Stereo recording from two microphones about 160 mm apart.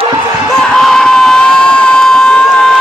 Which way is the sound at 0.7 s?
5° left (ahead or behind).